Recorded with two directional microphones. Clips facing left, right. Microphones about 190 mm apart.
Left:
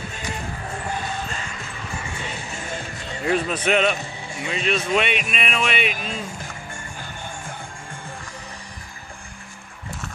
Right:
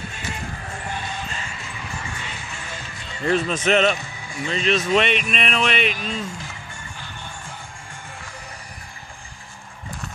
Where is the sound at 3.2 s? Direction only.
5° left (ahead or behind).